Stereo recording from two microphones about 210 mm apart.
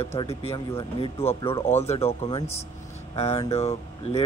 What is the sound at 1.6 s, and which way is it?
Speech, 10° left (ahead or behind).